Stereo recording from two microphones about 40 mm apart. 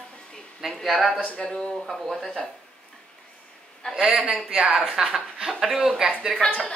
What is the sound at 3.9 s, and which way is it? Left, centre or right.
Speech, centre.